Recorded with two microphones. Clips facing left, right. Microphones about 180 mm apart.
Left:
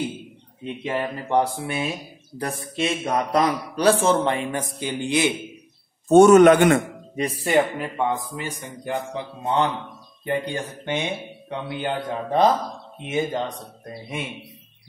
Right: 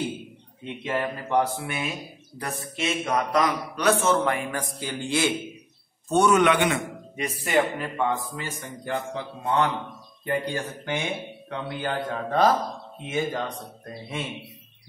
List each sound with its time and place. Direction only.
0.8 s speech: 25° left (ahead or behind)
6.0 s a man's voice: 45° left (ahead or behind)
7.5 s a man's voice: 20° left (ahead or behind)